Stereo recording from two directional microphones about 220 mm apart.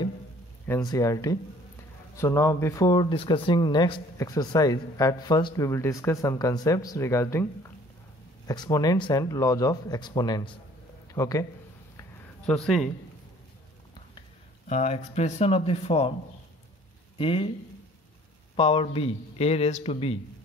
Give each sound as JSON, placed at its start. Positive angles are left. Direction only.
{"t": 0.7, "sound": "speech", "side_deg": 15}
{"t": 8.5, "sound": "speech", "side_deg": 15}
{"t": 12.0, "sound": "a sound", "side_deg": 5}
{"t": 14.7, "sound": "speech", "side_deg": 30}
{"t": 17.2, "sound": "speech", "side_deg": 25}
{"t": 18.6, "sound": "speech", "side_deg": 25}